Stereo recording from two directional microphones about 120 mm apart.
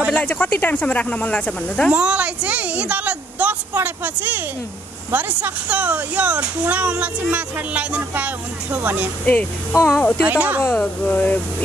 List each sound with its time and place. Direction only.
0.1 s speech: 15° left (ahead or behind)
1.9 s a child's voice: 10° right (ahead or behind)
9.2 s speech: 10° left (ahead or behind)
10.2 s a child's voice: 15° right (ahead or behind)
10.6 s speech: 10° left (ahead or behind)